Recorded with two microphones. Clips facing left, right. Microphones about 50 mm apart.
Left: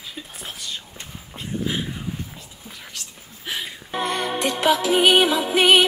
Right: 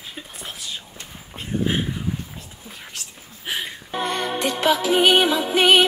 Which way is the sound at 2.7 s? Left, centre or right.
Right.